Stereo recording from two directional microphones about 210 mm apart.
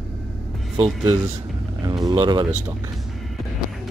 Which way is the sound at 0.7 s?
25° right (ahead or behind).